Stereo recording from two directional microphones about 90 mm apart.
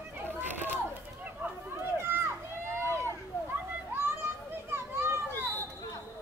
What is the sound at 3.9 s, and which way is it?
Children playing, 25° right (ahead or behind).